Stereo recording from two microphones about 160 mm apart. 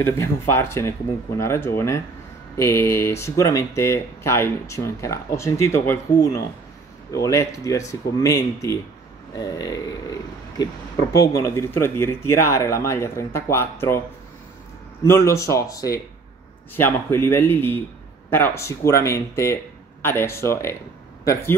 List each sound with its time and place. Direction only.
0.0 s speech: 15° left (ahead or behind)
15.0 s speech: 15° left (ahead or behind)